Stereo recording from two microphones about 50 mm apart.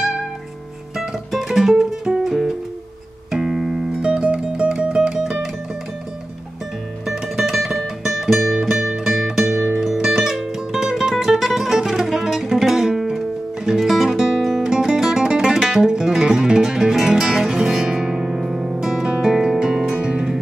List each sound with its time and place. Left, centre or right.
0.9 s music: centre
4.0 s music: centre
7.1 s music: centre